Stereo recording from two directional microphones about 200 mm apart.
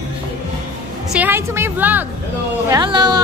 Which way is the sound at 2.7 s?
20° right (ahead or behind).